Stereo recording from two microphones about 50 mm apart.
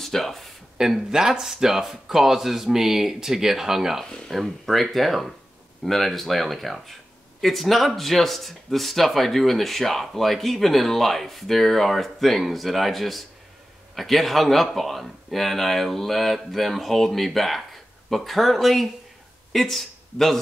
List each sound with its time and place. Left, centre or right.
0.0 s speech: centre
0.7 s speech: centre
4.0 s speech: centre
4.3 s speech: centre